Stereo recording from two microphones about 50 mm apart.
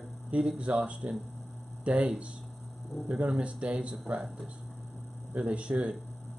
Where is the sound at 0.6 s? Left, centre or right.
Right.